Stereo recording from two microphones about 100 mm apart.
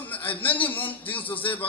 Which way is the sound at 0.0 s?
15° left (ahead or behind).